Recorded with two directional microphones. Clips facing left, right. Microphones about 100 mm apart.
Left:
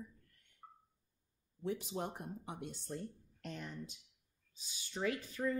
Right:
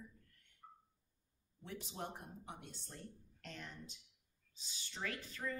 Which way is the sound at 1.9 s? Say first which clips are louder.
Left 6 dB; 15° left (ahead or behind).